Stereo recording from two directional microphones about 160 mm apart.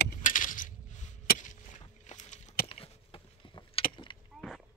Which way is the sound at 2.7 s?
35° left (ahead or behind).